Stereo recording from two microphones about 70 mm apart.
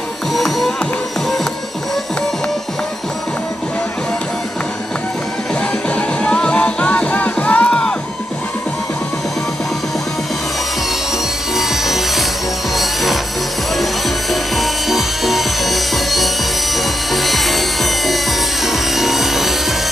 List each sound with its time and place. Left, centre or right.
0.3 s music: centre
5.9 s music: centre
11.5 s wood: centre
12.7 s music: centre
14.3 s music: centre